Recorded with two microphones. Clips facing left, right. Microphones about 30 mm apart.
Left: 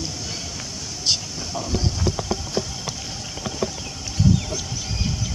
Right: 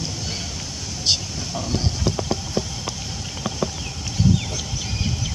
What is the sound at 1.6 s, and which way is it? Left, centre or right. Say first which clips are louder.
Speech: even; right.